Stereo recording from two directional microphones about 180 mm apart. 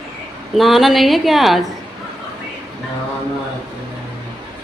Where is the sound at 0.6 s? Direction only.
Centre (ahead or behind).